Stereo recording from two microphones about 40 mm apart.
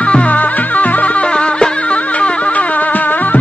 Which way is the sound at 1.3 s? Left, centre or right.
Left.